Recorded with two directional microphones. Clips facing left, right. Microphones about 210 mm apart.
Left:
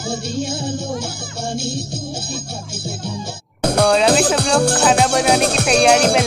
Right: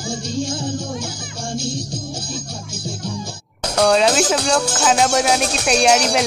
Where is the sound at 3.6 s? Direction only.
55° left (ahead or behind).